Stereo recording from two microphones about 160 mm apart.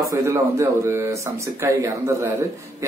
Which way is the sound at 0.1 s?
20° right (ahead or behind).